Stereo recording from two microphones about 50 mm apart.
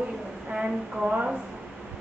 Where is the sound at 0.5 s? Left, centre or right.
Centre.